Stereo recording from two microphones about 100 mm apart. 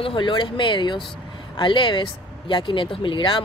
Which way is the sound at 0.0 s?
55° left (ahead or behind).